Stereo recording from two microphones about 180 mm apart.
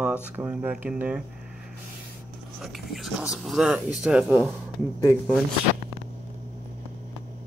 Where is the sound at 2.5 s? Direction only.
Centre (ahead or behind).